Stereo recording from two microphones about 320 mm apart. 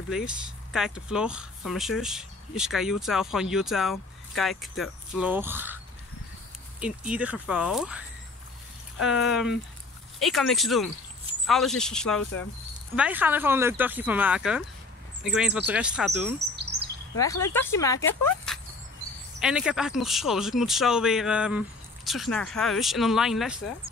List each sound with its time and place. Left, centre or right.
0.1 s speech: centre
6.8 s speech: centre
9.0 s speech: centre
16.7 s chirp: right
17.2 s speech: centre